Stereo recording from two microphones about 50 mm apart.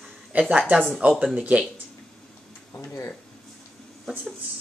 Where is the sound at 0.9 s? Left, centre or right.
Right.